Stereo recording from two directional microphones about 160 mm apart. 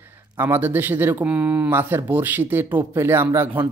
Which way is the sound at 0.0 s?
15° right (ahead or behind).